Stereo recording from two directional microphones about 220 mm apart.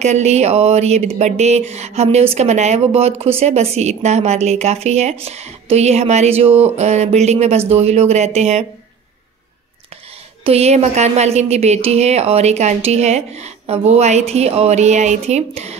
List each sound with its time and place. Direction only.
0.0 s speech: 30° right (ahead or behind)
10.4 s speech: 30° right (ahead or behind)